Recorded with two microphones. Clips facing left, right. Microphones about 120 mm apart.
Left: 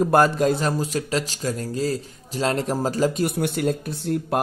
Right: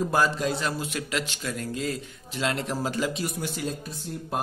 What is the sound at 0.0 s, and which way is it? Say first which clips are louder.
A man's voice: left 7 dB; 55° left (ahead or behind).